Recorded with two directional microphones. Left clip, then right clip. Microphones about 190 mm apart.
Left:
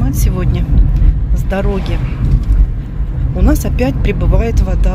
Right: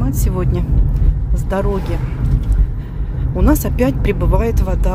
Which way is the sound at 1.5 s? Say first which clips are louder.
Left 1 dB; 5° right (ahead or behind).